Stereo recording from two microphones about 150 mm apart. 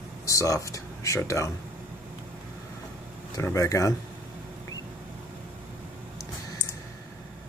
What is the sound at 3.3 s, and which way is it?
Speech, 20° left (ahead or behind).